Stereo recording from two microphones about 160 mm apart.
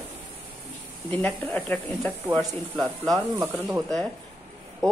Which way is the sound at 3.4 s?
10° right (ahead or behind).